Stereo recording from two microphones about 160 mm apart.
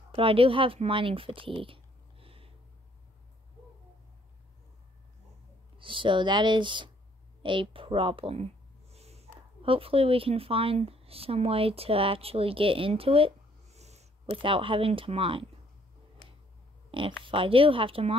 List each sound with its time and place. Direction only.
0.1 s speech: 35° right (ahead or behind)
5.8 s speech: 30° right (ahead or behind)
16.9 s speech: 30° right (ahead or behind)